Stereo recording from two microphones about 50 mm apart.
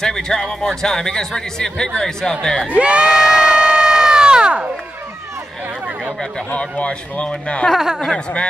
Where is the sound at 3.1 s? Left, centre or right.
Centre.